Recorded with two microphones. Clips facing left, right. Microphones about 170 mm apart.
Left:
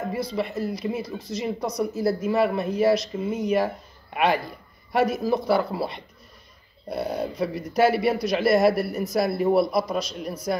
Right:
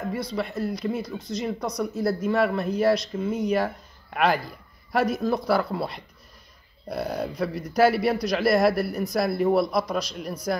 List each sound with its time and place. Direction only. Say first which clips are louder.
0.3 s a man's voice: left 1 dB; 5° left (ahead or behind)
1.0 s speech: even; 30° left (ahead or behind)
1.3 s a man's voice: left 1 dB; 5° left (ahead or behind)